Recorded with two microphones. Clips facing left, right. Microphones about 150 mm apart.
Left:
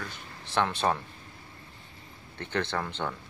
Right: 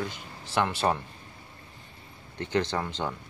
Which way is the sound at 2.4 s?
15° right (ahead or behind).